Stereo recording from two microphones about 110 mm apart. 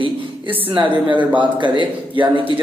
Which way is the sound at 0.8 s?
45° right (ahead or behind).